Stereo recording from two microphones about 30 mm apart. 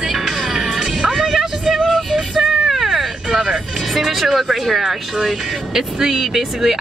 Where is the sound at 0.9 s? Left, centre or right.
Right.